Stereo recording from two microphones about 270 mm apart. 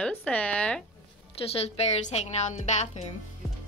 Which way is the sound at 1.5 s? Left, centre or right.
Left.